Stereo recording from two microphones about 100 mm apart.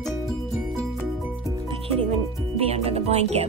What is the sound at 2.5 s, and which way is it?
Music, 90° right.